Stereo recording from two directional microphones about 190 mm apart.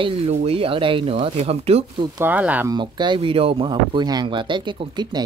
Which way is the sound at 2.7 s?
25° right (ahead or behind).